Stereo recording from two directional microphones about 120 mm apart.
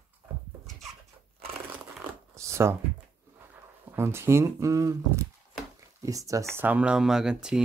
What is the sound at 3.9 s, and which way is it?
Speech, 20° right (ahead or behind).